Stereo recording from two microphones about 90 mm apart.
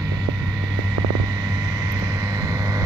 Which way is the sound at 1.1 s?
45° right (ahead or behind).